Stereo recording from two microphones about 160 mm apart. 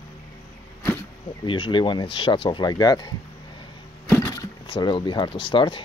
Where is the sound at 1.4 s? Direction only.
30° left (ahead or behind).